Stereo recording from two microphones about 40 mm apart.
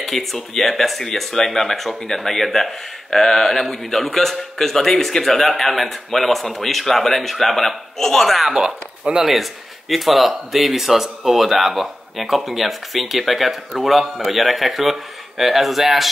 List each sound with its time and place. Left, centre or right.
0.0 s speech: centre
8.5 s speech: right
9.2 s speech: centre